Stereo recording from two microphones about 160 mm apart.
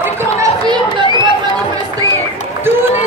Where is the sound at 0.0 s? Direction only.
15° right (ahead or behind).